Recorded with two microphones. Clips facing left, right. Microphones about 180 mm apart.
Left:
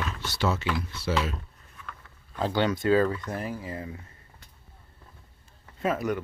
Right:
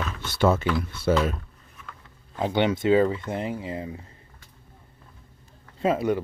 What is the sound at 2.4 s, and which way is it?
Speech, 20° right (ahead or behind).